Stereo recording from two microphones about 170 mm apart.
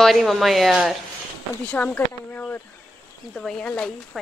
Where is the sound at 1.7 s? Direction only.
10° left (ahead or behind).